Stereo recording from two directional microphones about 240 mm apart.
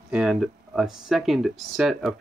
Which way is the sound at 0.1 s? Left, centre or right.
Centre.